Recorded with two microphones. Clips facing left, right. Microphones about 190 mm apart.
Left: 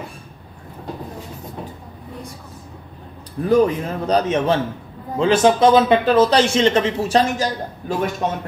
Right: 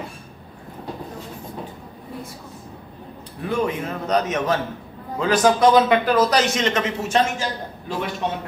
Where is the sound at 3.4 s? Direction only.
35° left (ahead or behind).